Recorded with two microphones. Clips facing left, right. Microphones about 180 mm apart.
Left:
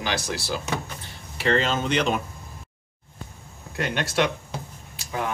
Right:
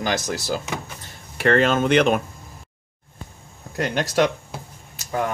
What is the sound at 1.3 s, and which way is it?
Speech, 55° right (ahead or behind).